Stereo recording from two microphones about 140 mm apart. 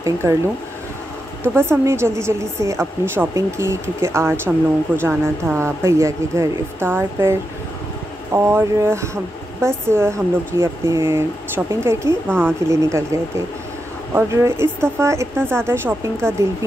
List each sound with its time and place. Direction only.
0.0 s a woman's voice: 20° right (ahead or behind)
1.4 s a woman's voice: 15° right (ahead or behind)